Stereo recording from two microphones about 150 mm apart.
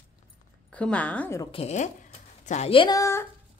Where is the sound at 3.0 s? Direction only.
20° left (ahead or behind).